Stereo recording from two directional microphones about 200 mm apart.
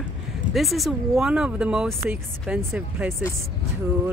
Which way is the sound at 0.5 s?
Centre (ahead or behind).